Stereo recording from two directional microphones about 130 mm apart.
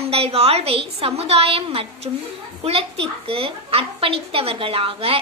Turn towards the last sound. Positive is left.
turn(degrees=-45)  # may be behind; listen again after turning